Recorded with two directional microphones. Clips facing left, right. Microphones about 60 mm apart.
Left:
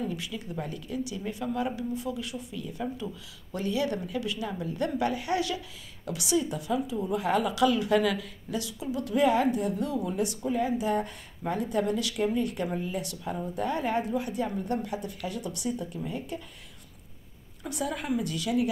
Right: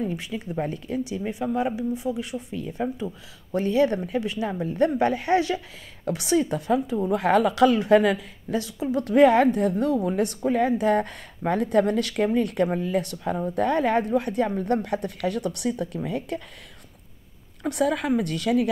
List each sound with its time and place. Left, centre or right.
0.0 s speech: right
2.5 s a woman's voice: right
17.6 s speech: right